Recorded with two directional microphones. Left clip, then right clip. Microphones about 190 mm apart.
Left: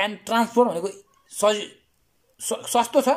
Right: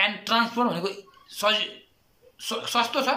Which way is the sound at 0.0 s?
35° left (ahead or behind).